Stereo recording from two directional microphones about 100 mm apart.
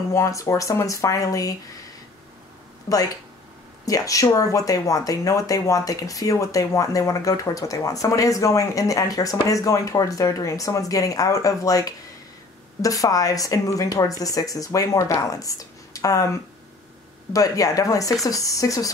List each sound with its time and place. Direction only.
0.1 s speech: 30° left (ahead or behind)
3.8 s speech: 35° left (ahead or behind)
17.3 s speech: 35° left (ahead or behind)